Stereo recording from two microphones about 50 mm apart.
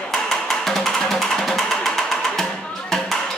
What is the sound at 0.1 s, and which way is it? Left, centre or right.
Music, centre.